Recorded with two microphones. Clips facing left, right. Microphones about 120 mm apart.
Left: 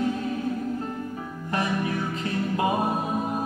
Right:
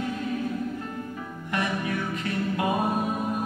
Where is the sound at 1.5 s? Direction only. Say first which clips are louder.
Left 2 dB; 30° left (ahead or behind).